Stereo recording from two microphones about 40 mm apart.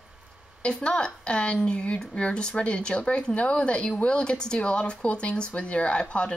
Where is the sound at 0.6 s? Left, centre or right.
Left.